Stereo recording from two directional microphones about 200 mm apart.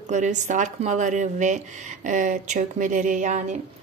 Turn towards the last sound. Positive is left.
turn(degrees=-40)  # may be behind; listen again after turning